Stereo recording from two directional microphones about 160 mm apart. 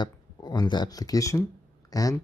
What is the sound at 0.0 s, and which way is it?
Speech, 25° left (ahead or behind).